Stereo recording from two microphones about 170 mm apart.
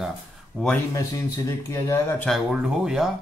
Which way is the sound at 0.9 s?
20° left (ahead or behind).